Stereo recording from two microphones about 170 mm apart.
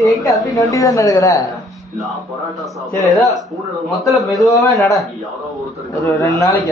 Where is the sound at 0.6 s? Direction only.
20° left (ahead or behind).